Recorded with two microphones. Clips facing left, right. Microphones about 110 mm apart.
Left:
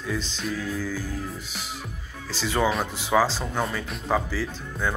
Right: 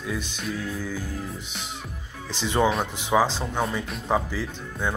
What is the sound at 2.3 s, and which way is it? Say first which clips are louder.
Speech: right 1 dB; 20° right (ahead or behind).